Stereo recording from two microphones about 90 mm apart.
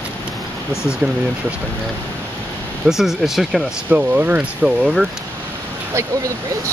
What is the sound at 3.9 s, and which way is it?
Speech, 20° right (ahead or behind).